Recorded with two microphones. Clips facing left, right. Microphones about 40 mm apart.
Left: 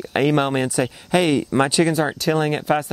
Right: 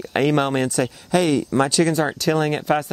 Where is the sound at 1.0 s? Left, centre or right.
Left.